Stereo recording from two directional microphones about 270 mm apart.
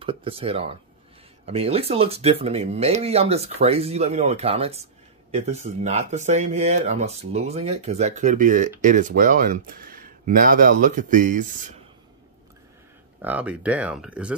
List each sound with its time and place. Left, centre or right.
0.0 s speech: centre
13.2 s speech: centre